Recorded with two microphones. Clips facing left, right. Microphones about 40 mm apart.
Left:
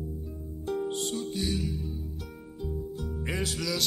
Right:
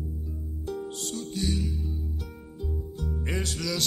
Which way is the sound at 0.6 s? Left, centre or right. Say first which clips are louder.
Left 4 dB; left.